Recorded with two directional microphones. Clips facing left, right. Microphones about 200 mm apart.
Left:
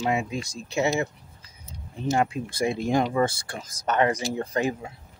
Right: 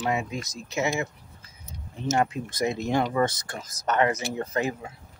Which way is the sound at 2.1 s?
25° left (ahead or behind).